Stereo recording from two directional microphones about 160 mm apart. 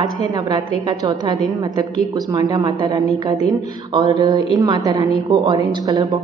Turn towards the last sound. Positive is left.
turn(degrees=-25)  # may be behind; listen again after turning